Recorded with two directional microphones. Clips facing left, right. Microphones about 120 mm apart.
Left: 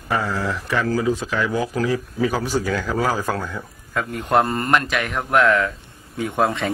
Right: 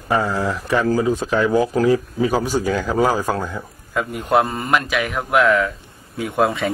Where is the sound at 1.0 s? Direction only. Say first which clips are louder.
Right 3 dB; 30° right (ahead or behind).